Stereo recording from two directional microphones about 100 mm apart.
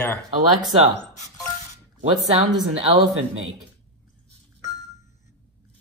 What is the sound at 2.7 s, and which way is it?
Speech, 80° right.